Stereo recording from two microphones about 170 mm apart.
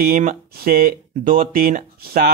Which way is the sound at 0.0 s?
55° right (ahead or behind).